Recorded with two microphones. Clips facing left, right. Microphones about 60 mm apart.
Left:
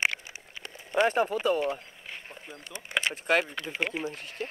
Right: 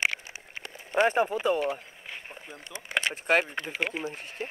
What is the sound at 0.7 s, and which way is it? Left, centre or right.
Speech, centre.